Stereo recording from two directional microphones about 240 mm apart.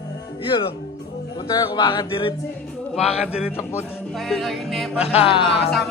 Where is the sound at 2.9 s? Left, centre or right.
Centre.